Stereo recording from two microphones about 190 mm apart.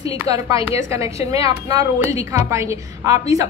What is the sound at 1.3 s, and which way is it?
Speech, 30° left (ahead or behind).